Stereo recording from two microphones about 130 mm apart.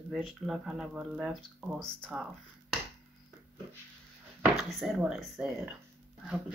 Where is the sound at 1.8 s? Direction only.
5° left (ahead or behind).